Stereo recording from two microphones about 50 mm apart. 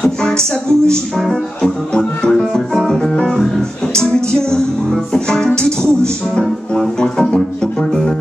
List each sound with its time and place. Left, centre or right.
0.0 s music: centre